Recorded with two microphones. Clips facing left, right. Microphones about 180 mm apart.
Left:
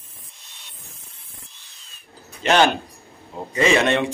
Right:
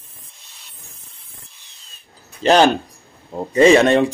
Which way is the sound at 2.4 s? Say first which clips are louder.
Right 4 dB; 35° right (ahead or behind).